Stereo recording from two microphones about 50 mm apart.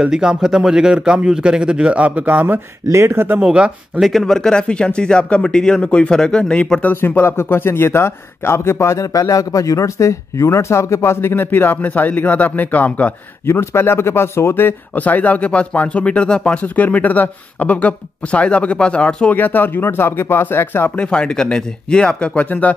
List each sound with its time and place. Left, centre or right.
0.0 s a man's voice: centre
2.9 s speech: right
3.3 s speech: centre
4.0 s speech: centre
4.4 s speech: centre
7.0 s a man's voice: left
13.5 s a man's voice: left
15.0 s speech: left
16.5 s speech: left
19.3 s speech: left
20.9 s speech: centre